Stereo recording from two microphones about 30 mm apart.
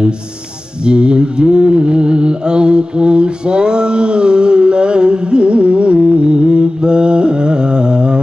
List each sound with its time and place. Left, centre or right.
0.8 s mantra: right